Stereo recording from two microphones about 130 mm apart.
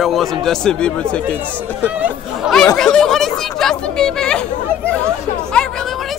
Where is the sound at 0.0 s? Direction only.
Centre (ahead or behind).